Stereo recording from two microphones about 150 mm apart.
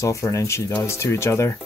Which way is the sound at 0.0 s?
20° left (ahead or behind).